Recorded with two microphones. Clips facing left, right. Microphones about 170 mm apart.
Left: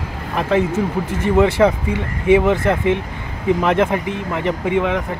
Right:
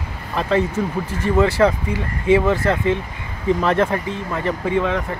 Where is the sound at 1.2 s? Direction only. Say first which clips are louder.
Left 2 dB; 20° left (ahead or behind).